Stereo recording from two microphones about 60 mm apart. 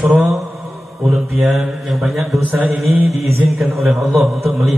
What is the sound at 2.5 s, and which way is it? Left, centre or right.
Mantra, right.